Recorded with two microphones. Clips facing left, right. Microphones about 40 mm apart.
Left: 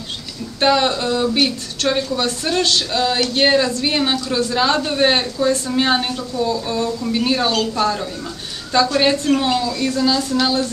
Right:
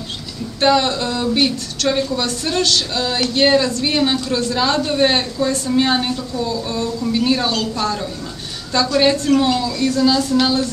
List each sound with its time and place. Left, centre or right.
0.6 s a woman's voice: centre